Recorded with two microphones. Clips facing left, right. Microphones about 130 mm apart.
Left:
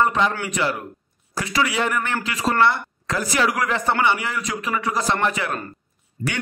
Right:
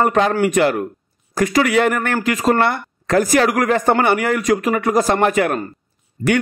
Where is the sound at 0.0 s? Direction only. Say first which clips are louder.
Right 5 dB; 55° right (ahead or behind).